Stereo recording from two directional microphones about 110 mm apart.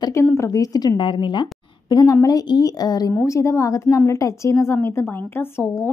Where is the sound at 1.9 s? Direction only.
30° left (ahead or behind).